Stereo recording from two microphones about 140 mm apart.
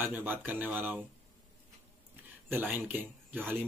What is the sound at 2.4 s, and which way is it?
Speech, 15° right (ahead or behind).